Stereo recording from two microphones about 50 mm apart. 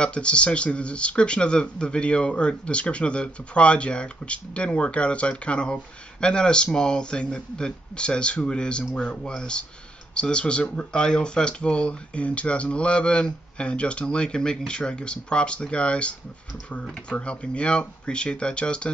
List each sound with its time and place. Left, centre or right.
0.0 s speech: left